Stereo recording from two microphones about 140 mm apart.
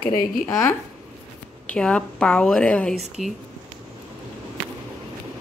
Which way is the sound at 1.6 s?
10° left (ahead or behind).